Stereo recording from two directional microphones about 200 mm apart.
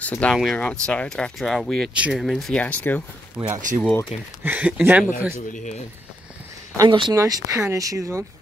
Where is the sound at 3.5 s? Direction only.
40° right (ahead or behind).